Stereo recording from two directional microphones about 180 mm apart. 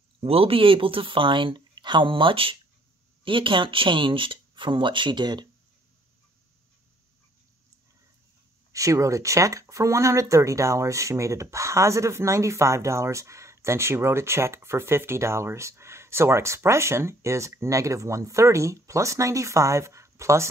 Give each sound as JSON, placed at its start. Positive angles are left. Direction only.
{"t": 0.2, "sound": "speech", "side_deg": -30}
{"t": 8.7, "sound": "speech", "side_deg": -15}